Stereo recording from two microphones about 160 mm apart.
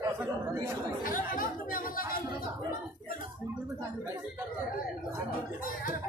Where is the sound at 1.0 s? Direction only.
60° left (ahead or behind).